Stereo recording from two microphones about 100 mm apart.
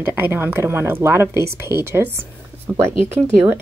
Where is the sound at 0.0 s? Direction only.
25° right (ahead or behind).